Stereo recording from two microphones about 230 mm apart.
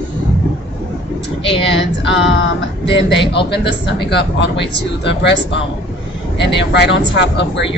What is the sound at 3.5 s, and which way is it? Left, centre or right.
Speech, left.